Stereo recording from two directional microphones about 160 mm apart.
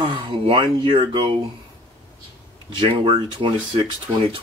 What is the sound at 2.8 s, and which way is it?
Speech, 35° right (ahead or behind).